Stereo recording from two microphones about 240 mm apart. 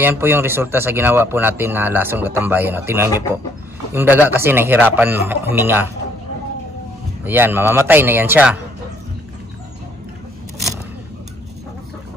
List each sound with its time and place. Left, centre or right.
0.0 s speech: centre
7.2 s speech: centre